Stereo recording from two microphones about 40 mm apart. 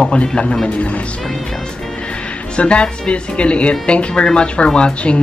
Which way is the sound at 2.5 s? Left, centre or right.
Left.